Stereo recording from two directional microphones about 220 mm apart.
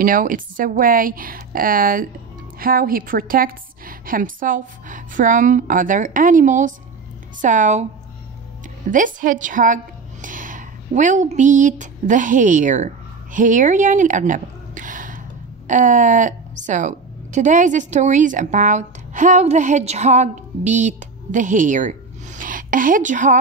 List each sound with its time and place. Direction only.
0.0 s a woman's voice: 40° right (ahead or behind)
8.8 s a woman's voice: 35° right (ahead or behind)